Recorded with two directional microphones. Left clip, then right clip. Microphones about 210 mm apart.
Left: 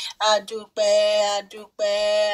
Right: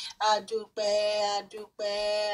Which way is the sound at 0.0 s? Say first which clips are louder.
Left 6 dB; 20° left (ahead or behind).